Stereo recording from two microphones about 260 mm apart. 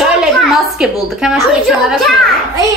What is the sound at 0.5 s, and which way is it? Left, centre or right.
A woman's voice, centre.